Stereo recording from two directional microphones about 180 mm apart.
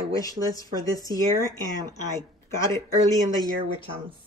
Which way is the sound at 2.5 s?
15° left (ahead or behind).